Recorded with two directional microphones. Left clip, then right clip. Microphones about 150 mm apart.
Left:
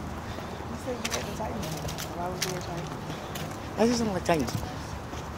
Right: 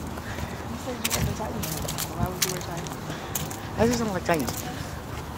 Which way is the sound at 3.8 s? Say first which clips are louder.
Right 1 dB; 25° left (ahead or behind).